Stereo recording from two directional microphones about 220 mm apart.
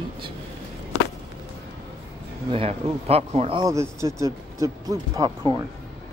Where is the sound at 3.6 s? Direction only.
15° right (ahead or behind).